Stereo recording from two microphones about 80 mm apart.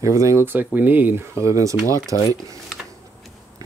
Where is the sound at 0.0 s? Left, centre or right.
Right.